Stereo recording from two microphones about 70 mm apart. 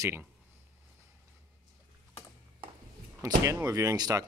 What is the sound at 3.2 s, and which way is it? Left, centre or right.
Speech, right.